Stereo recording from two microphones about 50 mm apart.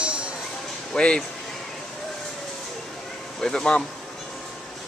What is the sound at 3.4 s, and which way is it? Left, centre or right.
Speech, centre.